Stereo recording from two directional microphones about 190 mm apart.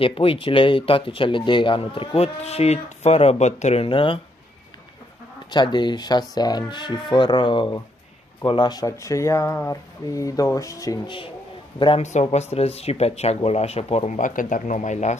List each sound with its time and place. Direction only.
0.0 s speech: 30° left (ahead or behind)
5.5 s speech: 25° left (ahead or behind); by 15.1 s 40° left (ahead or behind)